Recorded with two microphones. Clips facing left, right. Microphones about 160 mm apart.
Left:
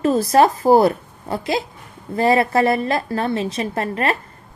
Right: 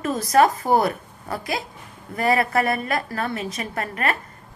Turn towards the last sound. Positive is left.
turn(degrees=30)  # may be behind; listen again after turning